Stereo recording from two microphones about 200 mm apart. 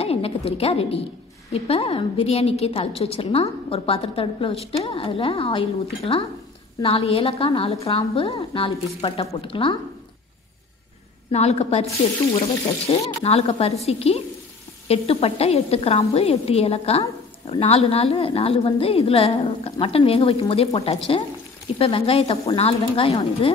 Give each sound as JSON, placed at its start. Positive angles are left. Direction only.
{"t": 0.0, "sound": "a woman's voice", "side_deg": 30}
{"t": 11.3, "sound": "a woman's voice", "side_deg": 30}